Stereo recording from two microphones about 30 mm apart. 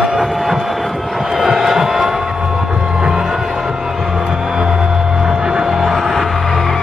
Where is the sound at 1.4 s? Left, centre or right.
Centre.